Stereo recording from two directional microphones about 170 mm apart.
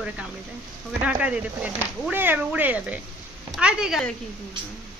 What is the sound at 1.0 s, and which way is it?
Speech, 5° right (ahead or behind).